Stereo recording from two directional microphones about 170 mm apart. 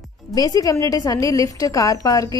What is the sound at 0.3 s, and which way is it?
A woman's voice, 20° left (ahead or behind).